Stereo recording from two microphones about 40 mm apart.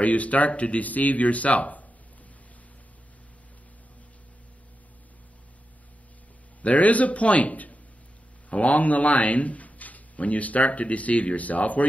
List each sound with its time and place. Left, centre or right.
0.0 s a man's voice: left
6.6 s a man's voice: left